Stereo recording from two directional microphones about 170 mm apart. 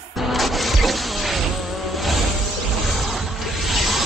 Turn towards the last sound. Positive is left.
turn(degrees=0)  # may be behind; listen again after turning